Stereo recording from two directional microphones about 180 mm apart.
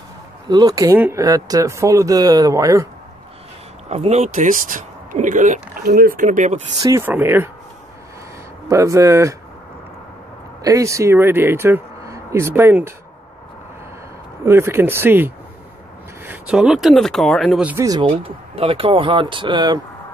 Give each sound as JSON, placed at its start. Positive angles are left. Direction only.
{"t": 0.5, "sound": "speech", "side_deg": -20}
{"t": 3.9, "sound": "speech", "side_deg": -40}
{"t": 6.8, "sound": "speech", "side_deg": -15}
{"t": 8.6, "sound": "speech", "side_deg": -15}
{"t": 10.6, "sound": "speech", "side_deg": -15}
{"t": 14.4, "sound": "speech", "side_deg": -15}
{"t": 17.6, "sound": "speech", "side_deg": -15}